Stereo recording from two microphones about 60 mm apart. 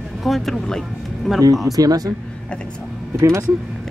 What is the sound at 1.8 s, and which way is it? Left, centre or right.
Speech, right.